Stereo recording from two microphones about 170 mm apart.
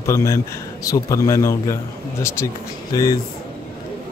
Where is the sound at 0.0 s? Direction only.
15° left (ahead or behind).